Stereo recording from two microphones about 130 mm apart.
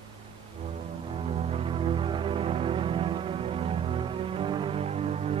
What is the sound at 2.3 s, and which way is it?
Music, 45° right (ahead or behind).